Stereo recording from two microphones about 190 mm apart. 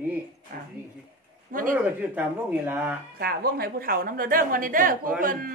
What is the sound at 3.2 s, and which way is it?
A woman's voice, 50° right (ahead or behind).